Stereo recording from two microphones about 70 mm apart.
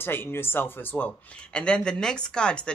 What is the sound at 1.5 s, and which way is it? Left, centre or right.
Speech, centre.